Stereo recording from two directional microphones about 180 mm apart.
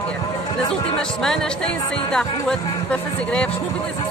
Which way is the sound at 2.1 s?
5° left (ahead or behind).